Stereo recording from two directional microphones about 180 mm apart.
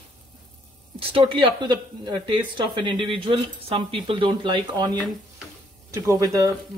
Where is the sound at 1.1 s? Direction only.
30° right (ahead or behind).